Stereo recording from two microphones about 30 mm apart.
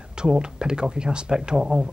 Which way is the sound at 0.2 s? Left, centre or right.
Right.